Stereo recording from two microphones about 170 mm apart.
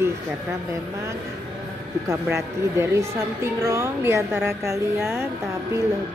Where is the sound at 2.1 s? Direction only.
15° right (ahead or behind).